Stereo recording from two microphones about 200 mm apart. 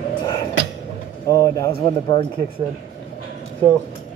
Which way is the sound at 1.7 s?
25° left (ahead or behind).